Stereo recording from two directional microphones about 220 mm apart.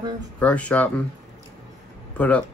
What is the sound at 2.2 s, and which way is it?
Speech, 5° left (ahead or behind).